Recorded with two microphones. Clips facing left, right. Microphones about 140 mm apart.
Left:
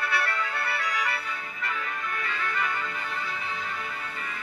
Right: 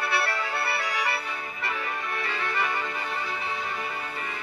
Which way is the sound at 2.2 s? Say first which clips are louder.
Right 1 dB; 30° right (ahead or behind).